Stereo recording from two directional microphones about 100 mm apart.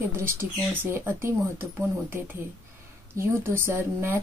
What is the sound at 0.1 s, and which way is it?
Speech, 25° right (ahead or behind).